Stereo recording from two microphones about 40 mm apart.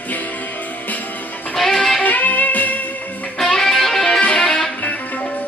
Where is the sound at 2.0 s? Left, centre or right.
Left.